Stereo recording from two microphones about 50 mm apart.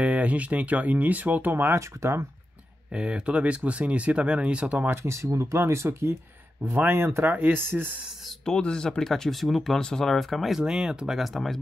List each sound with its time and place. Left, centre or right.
0.0 s speech: right
1.8 s speech: right
2.9 s speech: right
4.9 s speech: right
7.2 s speech: right
8.5 s speech: centre
9.8 s speech: centre
10.6 s speech: centre
11.1 s speech: centre